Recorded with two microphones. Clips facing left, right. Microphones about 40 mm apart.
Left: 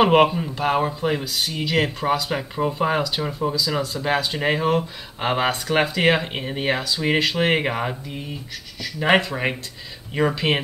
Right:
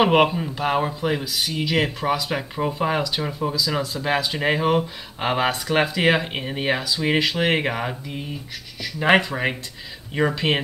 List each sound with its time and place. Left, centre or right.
0.0 s speech: centre
9.0 s speech: centre